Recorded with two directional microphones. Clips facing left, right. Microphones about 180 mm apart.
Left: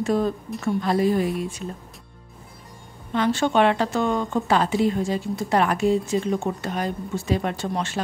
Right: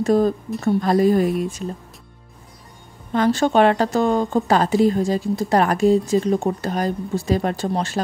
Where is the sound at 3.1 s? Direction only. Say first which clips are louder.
Right 4 dB; 40° right (ahead or behind).